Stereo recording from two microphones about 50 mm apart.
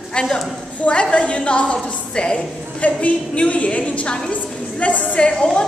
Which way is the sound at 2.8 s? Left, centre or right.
Left.